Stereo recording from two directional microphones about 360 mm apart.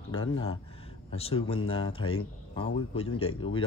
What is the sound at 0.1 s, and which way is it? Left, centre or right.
A man's voice, centre.